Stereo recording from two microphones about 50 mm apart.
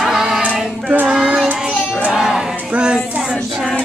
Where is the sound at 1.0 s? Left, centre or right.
Centre.